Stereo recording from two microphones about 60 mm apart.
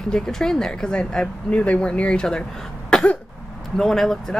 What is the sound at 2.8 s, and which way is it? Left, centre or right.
Cough, centre.